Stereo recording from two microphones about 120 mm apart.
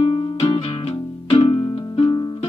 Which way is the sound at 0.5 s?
60° left (ahead or behind).